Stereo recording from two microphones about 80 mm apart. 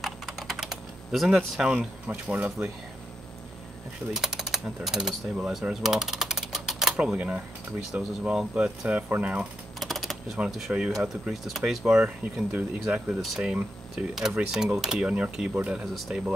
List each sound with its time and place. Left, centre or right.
0.0 s typing: centre
4.1 s speech: centre
5.5 s typewriter: centre
7.0 s speech: centre
9.8 s typing: centre
10.7 s speech: centre
15.8 s speech: centre